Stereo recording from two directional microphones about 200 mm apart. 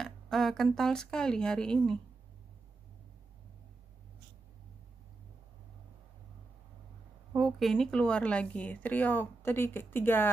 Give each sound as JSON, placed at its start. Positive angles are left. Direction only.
{"t": 0.0, "sound": "speech", "side_deg": 0}
{"t": 7.3, "sound": "speech", "side_deg": 0}